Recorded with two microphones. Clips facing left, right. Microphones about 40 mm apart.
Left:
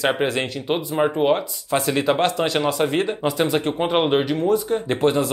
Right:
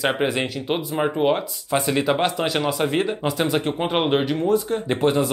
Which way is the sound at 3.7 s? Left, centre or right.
Centre.